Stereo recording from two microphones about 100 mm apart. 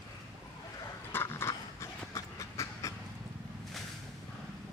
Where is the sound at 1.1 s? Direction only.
25° left (ahead or behind).